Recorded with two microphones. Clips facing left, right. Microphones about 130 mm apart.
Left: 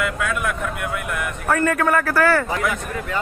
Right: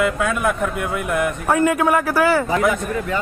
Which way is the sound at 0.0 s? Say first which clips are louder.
Right 4 dB; 30° right (ahead or behind).